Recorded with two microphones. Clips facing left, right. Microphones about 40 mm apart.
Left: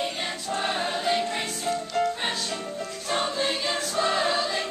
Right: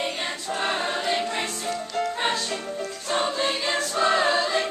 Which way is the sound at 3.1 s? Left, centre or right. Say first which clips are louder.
Right 2 dB; centre.